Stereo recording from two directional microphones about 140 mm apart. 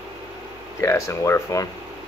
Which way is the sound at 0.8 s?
20° left (ahead or behind).